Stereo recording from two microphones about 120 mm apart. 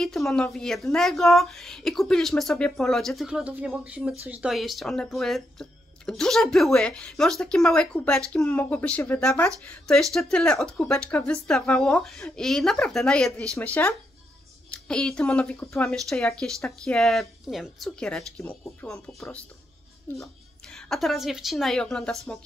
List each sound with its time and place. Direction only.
0.0 s a child's voice: 5° left (ahead or behind)
20.1 s speech: 20° left (ahead or behind)
20.7 s speech: centre (ahead or behind)